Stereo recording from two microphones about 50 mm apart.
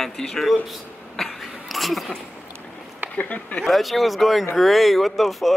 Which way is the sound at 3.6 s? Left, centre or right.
Centre.